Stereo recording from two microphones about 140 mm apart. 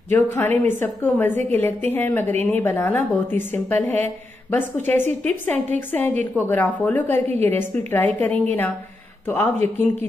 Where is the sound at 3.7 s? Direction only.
55° right (ahead or behind).